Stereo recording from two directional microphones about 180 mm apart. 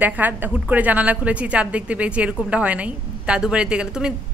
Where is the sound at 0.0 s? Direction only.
10° right (ahead or behind).